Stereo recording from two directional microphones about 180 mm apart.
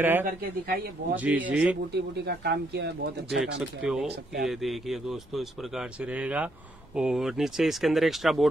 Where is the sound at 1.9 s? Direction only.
65° right (ahead or behind).